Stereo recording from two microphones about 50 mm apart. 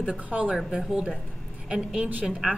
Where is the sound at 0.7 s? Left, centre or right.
Centre.